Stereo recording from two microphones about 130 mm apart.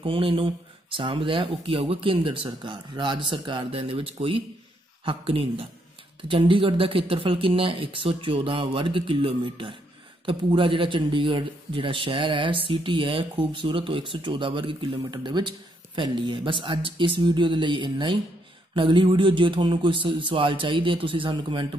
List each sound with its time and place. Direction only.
0.0 s speech: 40° right (ahead or behind)